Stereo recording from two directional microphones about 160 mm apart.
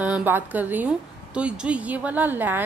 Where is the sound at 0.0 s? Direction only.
10° right (ahead or behind).